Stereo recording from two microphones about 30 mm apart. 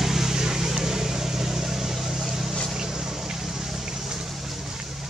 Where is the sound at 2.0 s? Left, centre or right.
Centre.